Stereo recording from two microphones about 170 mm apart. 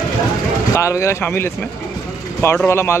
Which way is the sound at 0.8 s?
15° left (ahead or behind).